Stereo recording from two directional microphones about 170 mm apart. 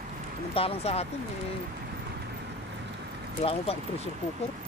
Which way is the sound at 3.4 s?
35° left (ahead or behind).